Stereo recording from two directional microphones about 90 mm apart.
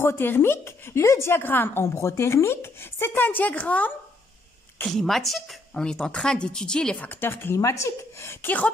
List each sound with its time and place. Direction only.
0.0 s speech: 25° left (ahead or behind)
4.8 s a woman's voice: 5° left (ahead or behind)
7.1 s speech: 25° left (ahead or behind)